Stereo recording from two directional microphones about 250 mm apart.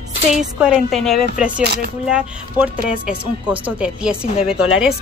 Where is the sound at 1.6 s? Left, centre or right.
Right.